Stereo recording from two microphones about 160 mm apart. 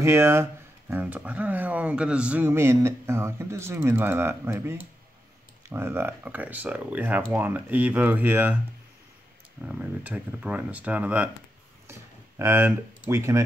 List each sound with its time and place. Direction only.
0.0 s speech: 15° right (ahead or behind)
9.6 s speech: 10° right (ahead or behind)